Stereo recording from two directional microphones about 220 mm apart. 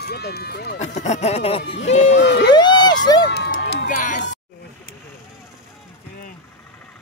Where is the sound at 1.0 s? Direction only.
30° left (ahead or behind).